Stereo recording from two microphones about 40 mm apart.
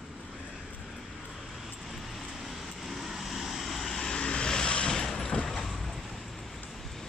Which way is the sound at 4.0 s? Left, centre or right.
Centre.